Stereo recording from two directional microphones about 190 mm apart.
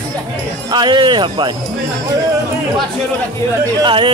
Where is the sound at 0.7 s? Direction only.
25° right (ahead or behind).